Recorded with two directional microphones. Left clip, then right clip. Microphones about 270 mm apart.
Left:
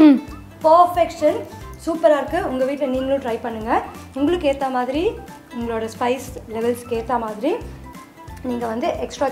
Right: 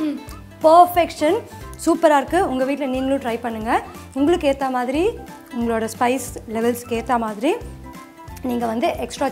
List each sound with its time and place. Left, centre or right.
0.7 s a woman's voice: right
2.0 s speech: right
2.3 s speech: right
5.6 s a woman's voice: right
8.4 s a woman's voice: right